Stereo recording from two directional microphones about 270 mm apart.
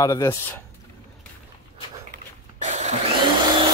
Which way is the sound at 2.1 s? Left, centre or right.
Right.